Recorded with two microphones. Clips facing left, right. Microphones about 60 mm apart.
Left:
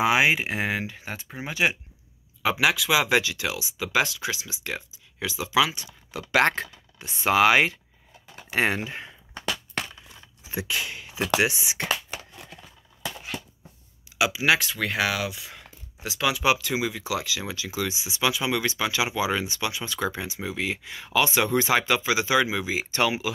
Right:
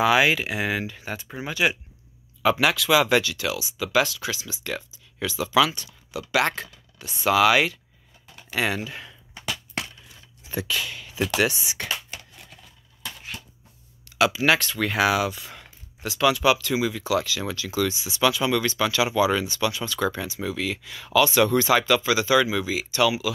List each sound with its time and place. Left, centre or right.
0.0 s speech: left
2.4 s speech: centre
6.1 s speech: left
10.5 s speech: centre
12.1 s crumpling: left
14.1 s speech: centre
22.8 s speech: left